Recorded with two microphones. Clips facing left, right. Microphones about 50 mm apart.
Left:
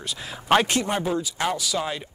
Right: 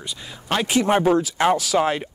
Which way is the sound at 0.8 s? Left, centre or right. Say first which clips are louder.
Right 8 dB; right.